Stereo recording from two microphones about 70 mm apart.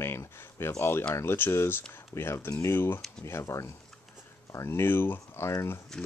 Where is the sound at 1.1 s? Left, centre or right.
Left.